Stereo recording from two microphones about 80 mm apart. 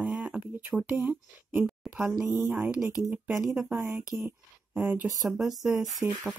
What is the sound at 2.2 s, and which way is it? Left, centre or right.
Speech, right.